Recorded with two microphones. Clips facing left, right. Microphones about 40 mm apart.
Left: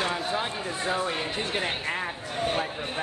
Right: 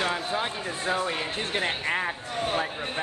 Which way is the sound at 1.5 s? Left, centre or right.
Centre.